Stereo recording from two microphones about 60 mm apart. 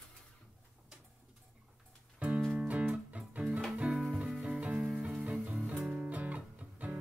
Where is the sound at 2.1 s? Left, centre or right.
Right.